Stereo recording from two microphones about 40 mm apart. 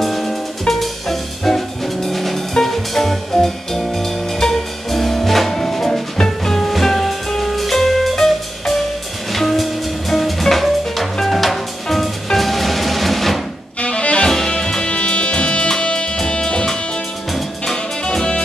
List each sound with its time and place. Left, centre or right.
0.0 s music: centre
13.7 s music: left
14.6 s music: centre
14.9 s music: left
18.0 s music: left